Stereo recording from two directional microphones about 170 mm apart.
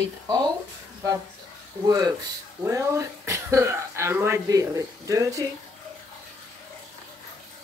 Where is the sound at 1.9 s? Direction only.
20° right (ahead or behind).